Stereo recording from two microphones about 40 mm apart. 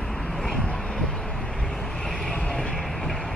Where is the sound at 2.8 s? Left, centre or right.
Centre.